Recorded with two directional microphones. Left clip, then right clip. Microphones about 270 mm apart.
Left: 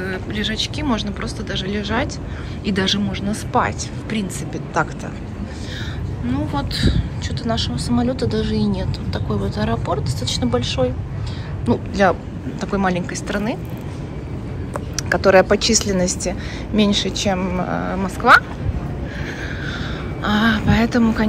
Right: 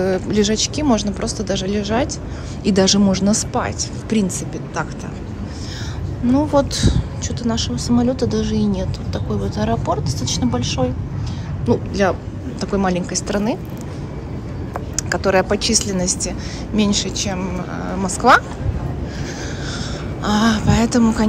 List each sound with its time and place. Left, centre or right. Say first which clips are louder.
0.0 s speech: right 7 dB; right
3.5 s speech: left 3 dB; centre
6.3 s speech: right 8 dB; right
15.0 s speech: left 4 dB; centre
19.8 s a sound: even; centre